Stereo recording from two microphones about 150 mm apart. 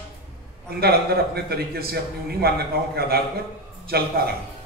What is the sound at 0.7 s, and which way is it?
A man's voice, 90° right.